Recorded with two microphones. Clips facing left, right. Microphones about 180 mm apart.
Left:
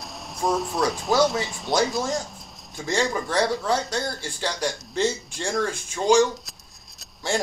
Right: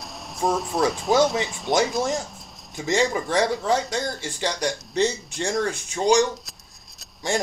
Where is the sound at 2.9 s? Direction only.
15° right (ahead or behind).